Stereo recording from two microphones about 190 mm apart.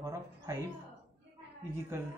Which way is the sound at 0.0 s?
15° right (ahead or behind).